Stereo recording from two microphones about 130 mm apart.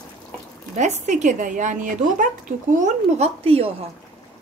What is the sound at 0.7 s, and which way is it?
Speech, 65° right (ahead or behind).